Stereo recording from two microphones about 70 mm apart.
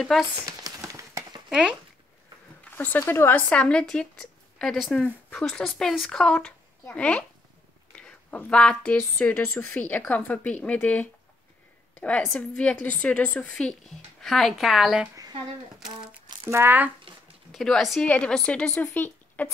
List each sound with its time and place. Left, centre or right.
0.0 s speech: centre
0.5 s a sound: right
1.5 s speech: centre
2.7 s speech: left
3.4 s a woman's voice: centre
7.9 s a sound: centre
8.5 s speech: centre
9.5 s speech: left
12.4 s a woman's voice: centre
16.6 s speech: right
17.5 s speech: centre
18.0 s a woman's voice: left